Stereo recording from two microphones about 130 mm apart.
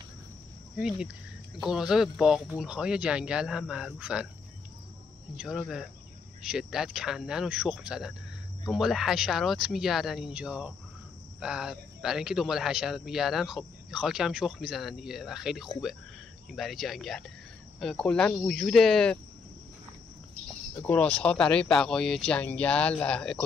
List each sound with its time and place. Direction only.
0.7 s a man's voice: 5° right (ahead or behind)
5.3 s a man's voice: 5° right (ahead or behind); by 18.5 s 15° left (ahead or behind)
18.5 s a man's voice: centre (ahead or behind)
20.8 s speech: 10° left (ahead or behind)